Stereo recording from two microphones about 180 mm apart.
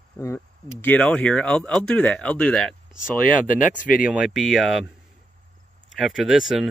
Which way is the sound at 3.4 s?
45° left (ahead or behind).